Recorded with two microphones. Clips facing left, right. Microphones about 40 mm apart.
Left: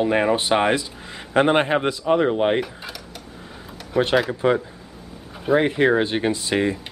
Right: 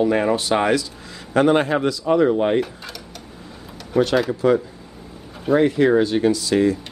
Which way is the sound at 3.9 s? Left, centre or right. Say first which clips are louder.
Right 2 dB; centre.